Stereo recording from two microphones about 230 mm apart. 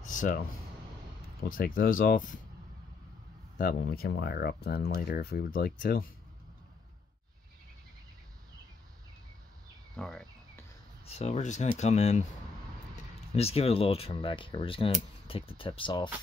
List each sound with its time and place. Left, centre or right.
0.0 s a sound: left
1.5 s speech: left
3.5 s speech: left
9.9 s cricket: centre
11.1 s speech: left
13.4 s speech: left